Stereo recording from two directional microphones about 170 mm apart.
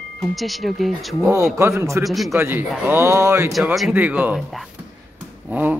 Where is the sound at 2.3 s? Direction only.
15° right (ahead or behind).